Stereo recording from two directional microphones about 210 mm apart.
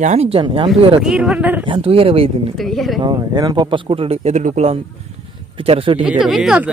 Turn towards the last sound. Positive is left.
turn(degrees=-5)  # may be behind; listen again after turning